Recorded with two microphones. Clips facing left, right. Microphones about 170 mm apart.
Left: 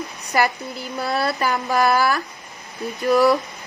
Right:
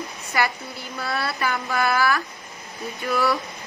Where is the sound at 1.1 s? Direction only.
40° left (ahead or behind).